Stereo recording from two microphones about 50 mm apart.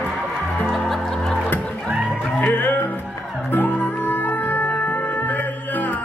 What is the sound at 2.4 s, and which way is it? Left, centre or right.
Music, left.